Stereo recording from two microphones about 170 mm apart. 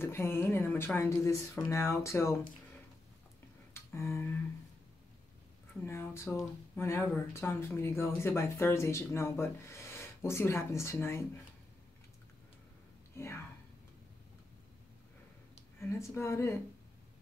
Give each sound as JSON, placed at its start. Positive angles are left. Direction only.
{"t": 0.0, "sound": "speech", "side_deg": 15}
{"t": 3.7, "sound": "a sound", "side_deg": 15}
{"t": 5.9, "sound": "speech", "side_deg": 15}
{"t": 13.1, "sound": "speech", "side_deg": 15}
{"t": 15.8, "sound": "speech", "side_deg": 15}